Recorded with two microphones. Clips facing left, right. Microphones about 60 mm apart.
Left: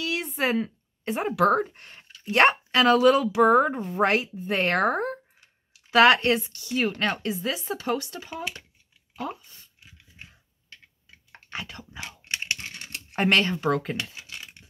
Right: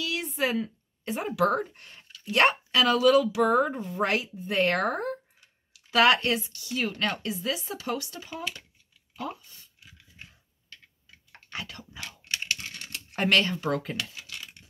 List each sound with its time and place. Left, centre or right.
0.0 s speech: left
9.1 s a sound: left
10.7 s computer keyboard: left